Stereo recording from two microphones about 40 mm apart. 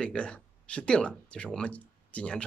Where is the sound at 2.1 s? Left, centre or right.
Left.